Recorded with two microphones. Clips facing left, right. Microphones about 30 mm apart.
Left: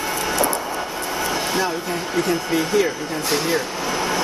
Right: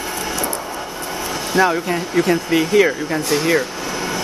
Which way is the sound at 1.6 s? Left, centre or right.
Right.